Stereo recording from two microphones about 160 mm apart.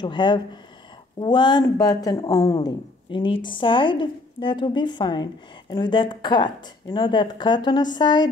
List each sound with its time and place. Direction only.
0.0 s speech: 30° left (ahead or behind)